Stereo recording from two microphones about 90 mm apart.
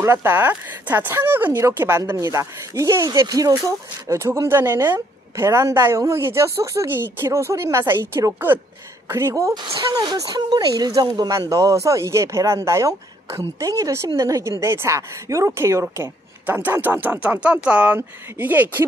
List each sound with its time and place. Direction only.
0.0 s speech: 30° right (ahead or behind)
9.8 s speech: 50° right (ahead or behind); by 18.9 s 20° right (ahead or behind)